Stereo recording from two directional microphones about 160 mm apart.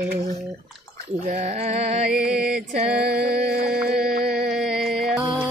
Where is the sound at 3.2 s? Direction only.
85° right.